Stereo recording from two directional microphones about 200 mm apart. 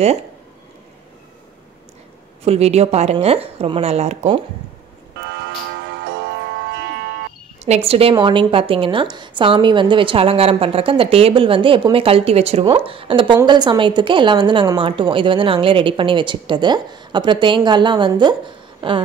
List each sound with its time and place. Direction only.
2.4 s speech: 30° right (ahead or behind)
5.3 s music: 60° right (ahead or behind)
7.6 s a woman's voice: 30° right (ahead or behind)
18.8 s a sound: 25° right (ahead or behind)